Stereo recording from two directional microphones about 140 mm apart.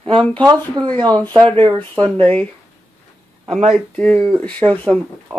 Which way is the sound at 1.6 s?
35° right (ahead or behind).